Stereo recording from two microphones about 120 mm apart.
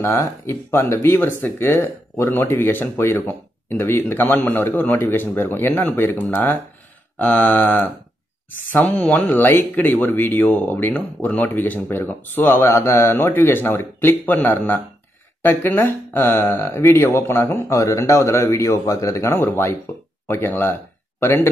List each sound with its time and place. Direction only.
0.0 s speech: 20° left (ahead or behind)